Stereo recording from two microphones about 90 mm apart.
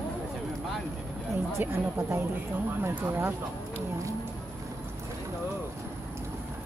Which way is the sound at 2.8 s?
25° right (ahead or behind).